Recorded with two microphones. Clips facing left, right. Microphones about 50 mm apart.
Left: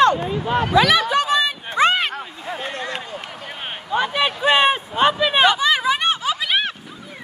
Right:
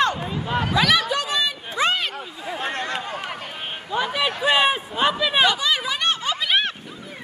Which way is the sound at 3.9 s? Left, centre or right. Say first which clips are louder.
Left 3 dB; left.